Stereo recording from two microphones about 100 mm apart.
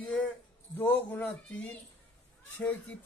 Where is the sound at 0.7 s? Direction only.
20° left (ahead or behind).